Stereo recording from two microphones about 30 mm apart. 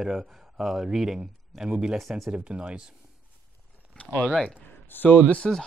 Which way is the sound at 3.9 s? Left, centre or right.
Left.